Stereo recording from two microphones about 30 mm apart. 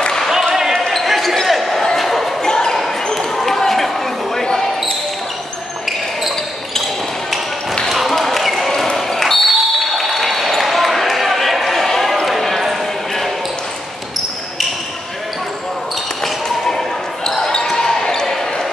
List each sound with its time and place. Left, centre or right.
0.9 s basketball bounce: centre
1.3 s a sound: centre
2.4 s basketball bounce: centre
3.2 s basketball bounce: centre
8.1 s basketball bounce: centre
9.5 s a sound: centre
10.1 s basketball bounce: centre
16.6 s basketball bounce: centre